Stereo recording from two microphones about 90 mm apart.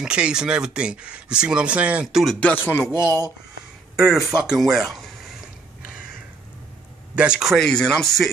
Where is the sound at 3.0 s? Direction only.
40° right (ahead or behind).